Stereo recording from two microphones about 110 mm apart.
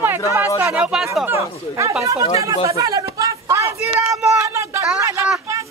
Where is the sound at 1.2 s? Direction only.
25° right (ahead or behind).